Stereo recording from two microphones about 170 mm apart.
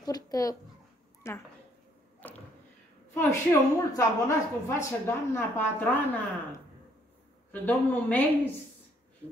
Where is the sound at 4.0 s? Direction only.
15° left (ahead or behind).